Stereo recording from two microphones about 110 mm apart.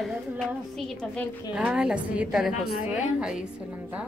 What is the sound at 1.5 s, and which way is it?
A woman's voice, 10° right (ahead or behind).